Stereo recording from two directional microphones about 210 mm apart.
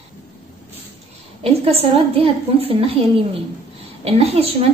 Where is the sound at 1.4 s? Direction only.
30° right (ahead or behind).